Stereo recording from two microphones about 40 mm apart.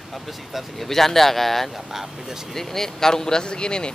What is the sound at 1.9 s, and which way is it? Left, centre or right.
Speech, centre.